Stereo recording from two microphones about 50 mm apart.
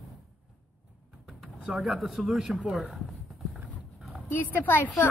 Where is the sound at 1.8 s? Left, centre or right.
Centre.